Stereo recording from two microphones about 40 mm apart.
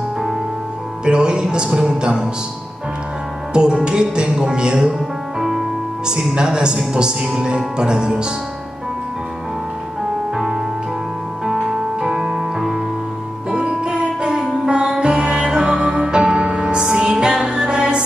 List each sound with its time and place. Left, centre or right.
1.0 s music: right
3.5 s music: centre
6.3 s music: right
6.8 s speech: centre
7.3 s music: right
11.6 s music: right
12.5 s music: centre
13.5 s music: centre